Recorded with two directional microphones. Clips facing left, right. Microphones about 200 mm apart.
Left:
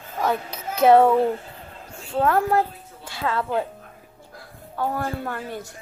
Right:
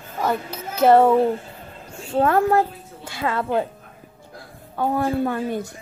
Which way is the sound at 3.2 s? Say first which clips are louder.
Right 2 dB; 20° right (ahead or behind).